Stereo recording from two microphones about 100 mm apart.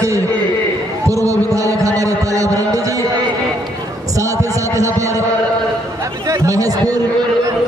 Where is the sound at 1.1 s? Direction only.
35° right (ahead or behind).